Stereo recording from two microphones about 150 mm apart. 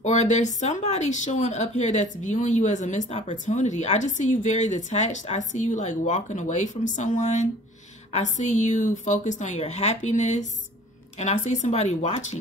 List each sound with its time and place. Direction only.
0.0 s speech: 50° left (ahead or behind)